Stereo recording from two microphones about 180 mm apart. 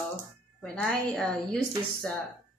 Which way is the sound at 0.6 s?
5° left (ahead or behind).